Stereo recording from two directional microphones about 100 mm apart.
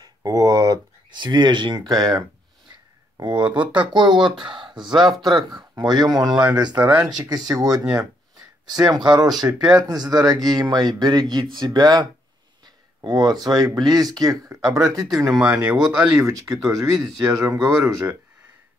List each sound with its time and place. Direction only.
0.0 s speech: 40° right (ahead or behind)
5.0 s speech: centre (ahead or behind)
5.3 s speech: 40° right (ahead or behind)
7.9 s a sound: 35° right (ahead or behind)
9.6 s speech: 40° right (ahead or behind)
15.4 s speech: 15° right (ahead or behind)
16.1 s speech: 30° right (ahead or behind)